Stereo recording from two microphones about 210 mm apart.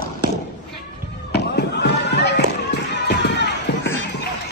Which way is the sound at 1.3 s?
50° left (ahead or behind).